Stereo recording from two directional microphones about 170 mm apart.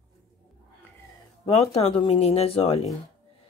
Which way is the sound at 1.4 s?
35° left (ahead or behind).